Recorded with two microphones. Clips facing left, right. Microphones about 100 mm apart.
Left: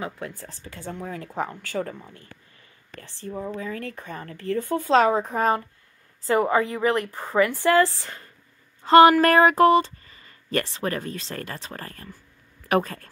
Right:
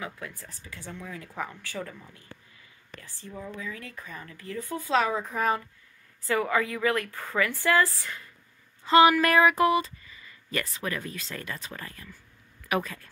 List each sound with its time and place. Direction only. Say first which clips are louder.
0.0 s speech: left 5 dB; 35° left (ahead or behind)
0.8 s speech: left 7 dB; 40° left (ahead or behind)
3.3 s a woman's voice: left 7 dB; 35° left (ahead or behind); by 4.6 s 60° left (ahead or behind)
4.6 s a woman's voice: left 7 dB; 30° left (ahead or behind)
8.8 s speech: left 6 dB; 50° left (ahead or behind)
10.6 s speech: left 5 dB; 30° left (ahead or behind)
10.9 s speech: left 5 dB; 40° left (ahead or behind)